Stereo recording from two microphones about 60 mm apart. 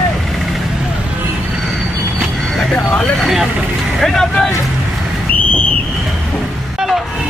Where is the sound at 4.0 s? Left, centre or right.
Centre.